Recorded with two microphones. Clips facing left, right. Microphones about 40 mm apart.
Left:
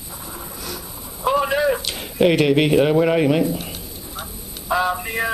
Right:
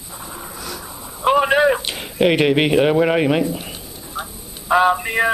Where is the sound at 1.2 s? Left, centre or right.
Right; by 4.2 s centre.